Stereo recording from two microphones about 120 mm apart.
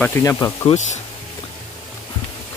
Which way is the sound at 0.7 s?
80° left.